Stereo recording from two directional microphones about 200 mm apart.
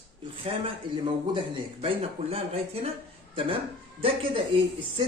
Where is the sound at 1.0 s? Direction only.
25° right (ahead or behind).